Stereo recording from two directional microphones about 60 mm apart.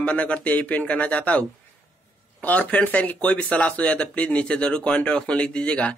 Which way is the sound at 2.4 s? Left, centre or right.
Left.